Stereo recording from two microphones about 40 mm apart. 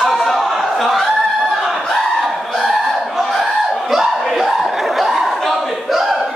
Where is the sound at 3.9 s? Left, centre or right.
Centre.